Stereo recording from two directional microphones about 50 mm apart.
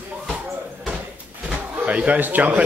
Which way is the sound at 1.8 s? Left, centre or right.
Right.